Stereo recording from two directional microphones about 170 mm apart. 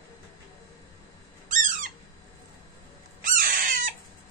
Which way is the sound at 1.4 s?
50° right (ahead or behind).